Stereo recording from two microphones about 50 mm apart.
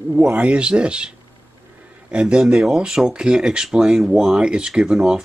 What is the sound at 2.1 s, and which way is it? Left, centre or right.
Speech, centre.